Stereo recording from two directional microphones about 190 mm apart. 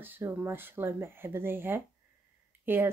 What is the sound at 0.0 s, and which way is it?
Speech, 10° right (ahead or behind).